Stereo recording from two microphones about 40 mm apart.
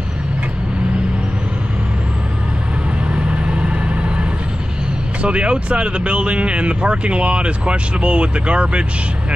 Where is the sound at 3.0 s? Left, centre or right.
Right.